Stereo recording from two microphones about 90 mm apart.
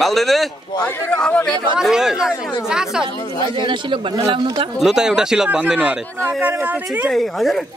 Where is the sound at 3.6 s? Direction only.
70° right (ahead or behind).